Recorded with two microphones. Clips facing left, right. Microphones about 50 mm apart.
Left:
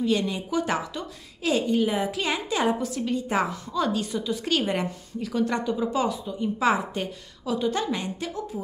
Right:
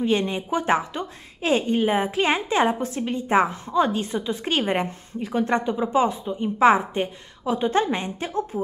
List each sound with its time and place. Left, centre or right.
0.0 s a woman's voice: right